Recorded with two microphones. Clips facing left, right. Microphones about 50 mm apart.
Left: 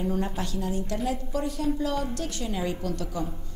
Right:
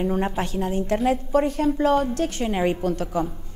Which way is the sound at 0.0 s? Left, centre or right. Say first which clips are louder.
Right 5 dB; right.